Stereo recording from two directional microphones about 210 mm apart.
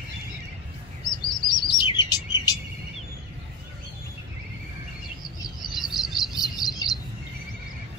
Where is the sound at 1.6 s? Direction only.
20° left (ahead or behind).